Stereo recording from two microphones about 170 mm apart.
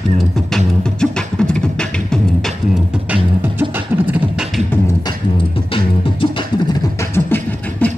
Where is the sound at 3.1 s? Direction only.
10° right (ahead or behind).